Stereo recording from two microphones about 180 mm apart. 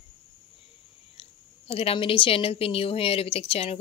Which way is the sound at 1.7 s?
35° left (ahead or behind).